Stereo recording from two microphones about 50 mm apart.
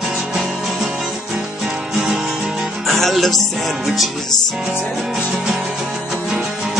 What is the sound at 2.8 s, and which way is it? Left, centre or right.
Music, centre.